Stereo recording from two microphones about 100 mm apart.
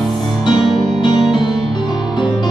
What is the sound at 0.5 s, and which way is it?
Music, 55° left (ahead or behind).